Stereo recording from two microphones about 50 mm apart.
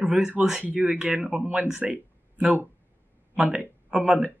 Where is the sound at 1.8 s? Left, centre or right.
Right.